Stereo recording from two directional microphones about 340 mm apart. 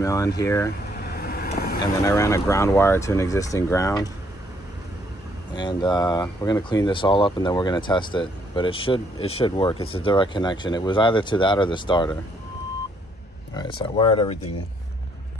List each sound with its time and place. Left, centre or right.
0.0 s speech: centre
1.0 s vehicle: left
2.0 s speech: centre
5.5 s speech: centre
13.6 s speech: centre